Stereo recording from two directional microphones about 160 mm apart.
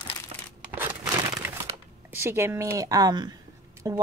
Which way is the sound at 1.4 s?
10° right (ahead or behind).